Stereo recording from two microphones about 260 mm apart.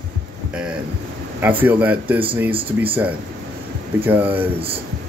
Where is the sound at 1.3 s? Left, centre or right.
Centre.